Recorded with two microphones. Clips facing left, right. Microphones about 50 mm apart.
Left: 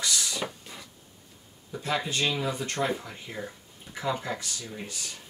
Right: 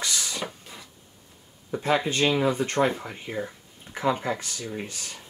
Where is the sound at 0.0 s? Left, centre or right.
Right.